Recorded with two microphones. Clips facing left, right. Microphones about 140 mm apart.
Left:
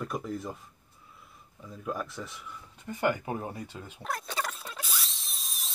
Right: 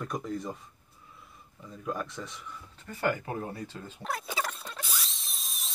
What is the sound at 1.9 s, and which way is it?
Speech, 5° left (ahead or behind).